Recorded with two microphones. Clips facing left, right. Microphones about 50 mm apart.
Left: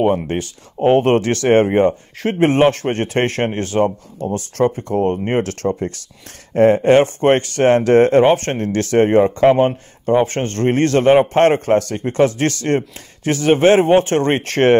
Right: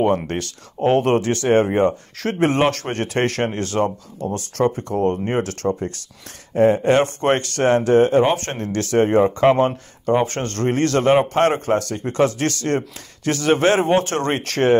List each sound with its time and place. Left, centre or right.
0.0 s speech: centre
1.0 s a man's voice: left
7.8 s speech: left
8.2 s a man's voice: left
9.6 s a man's voice: left
11.3 s a man's voice: left